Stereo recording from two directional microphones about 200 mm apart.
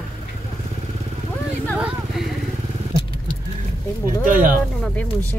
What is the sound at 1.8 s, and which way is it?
Vehicle, centre (ahead or behind).